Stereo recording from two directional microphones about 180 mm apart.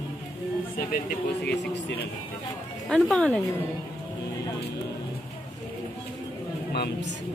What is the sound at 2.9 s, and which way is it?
Speech, centre (ahead or behind).